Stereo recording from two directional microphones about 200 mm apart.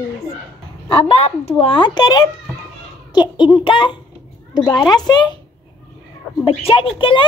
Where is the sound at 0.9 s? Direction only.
30° left (ahead or behind).